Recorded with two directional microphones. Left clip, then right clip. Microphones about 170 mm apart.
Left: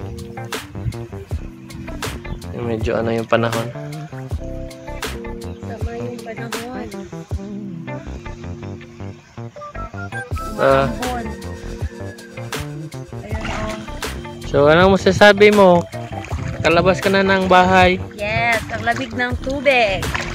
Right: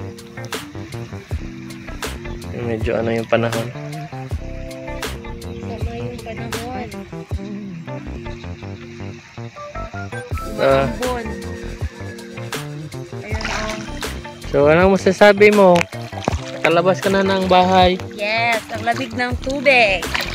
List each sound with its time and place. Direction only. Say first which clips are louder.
2.0 s speech: even; centre (ahead or behind)
10.7 s speech: even; centre (ahead or behind)
13.3 s music: right 2 dB; 20° left (ahead or behind)
14.0 s speech: left 1 dB; centre (ahead or behind)
16.6 s speech: even; 25° left (ahead or behind)
17.3 s speech: left 2 dB; centre (ahead or behind)